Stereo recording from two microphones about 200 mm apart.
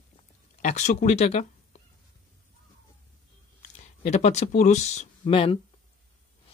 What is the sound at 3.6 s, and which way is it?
Speech, 35° left (ahead or behind).